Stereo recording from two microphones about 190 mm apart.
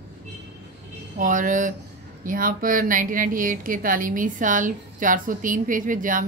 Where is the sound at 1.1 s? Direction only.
45° right (ahead or behind).